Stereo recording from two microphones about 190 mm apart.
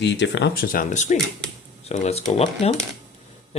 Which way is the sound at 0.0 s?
65° left (ahead or behind).